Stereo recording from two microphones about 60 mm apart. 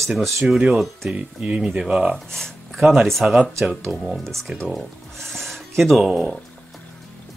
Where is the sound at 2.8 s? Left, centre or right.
Centre.